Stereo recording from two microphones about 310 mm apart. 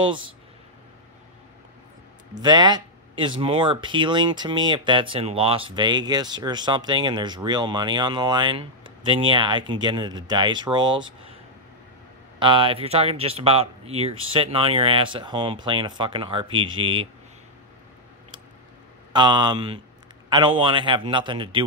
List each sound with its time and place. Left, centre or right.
0.0 s speech: centre
2.4 s speech: centre
12.4 s speech: centre
19.1 s speech: centre